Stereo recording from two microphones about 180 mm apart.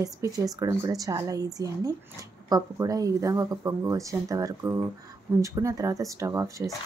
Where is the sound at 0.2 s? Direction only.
15° right (ahead or behind).